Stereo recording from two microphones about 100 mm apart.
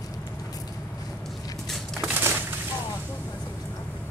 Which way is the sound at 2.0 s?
20° right (ahead or behind).